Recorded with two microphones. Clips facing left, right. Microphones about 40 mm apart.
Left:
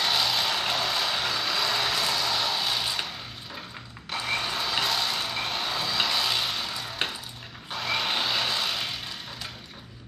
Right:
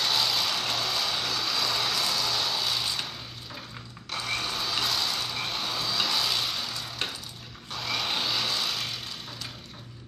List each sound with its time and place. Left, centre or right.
0.0 s vehicle: centre
4.1 s blender: centre
4.8 s vehicle: centre
7.7 s music: centre